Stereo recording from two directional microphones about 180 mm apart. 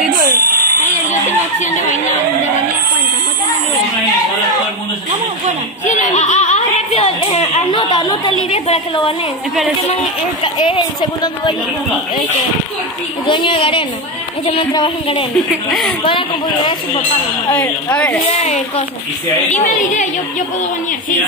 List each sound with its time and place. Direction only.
0.5 s a sound: 55° right (ahead or behind)
5.9 s a sound: 40° left (ahead or behind); by 8.5 s 25° left (ahead or behind)
8.6 s a woman's voice: 30° left (ahead or behind)
10.4 s a woman's voice: 30° left (ahead or behind)
13.3 s a woman's voice: 25° left (ahead or behind)
15.3 s speech: centre (ahead or behind)
16.0 s a woman's voice: 30° left (ahead or behind)
17.5 s a woman's voice: 10° left (ahead or behind)
18.3 s a woman's voice: 35° left (ahead or behind)